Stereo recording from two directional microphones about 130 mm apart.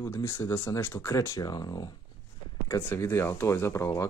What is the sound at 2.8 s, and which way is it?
Speech, 20° left (ahead or behind).